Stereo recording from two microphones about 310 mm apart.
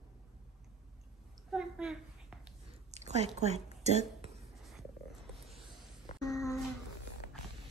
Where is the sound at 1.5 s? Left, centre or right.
Centre.